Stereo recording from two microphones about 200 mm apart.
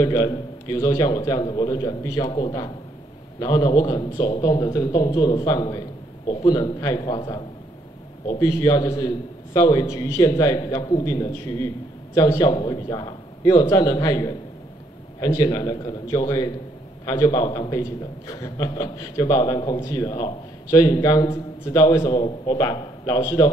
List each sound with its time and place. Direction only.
0.0 s a man's voice: 20° left (ahead or behind)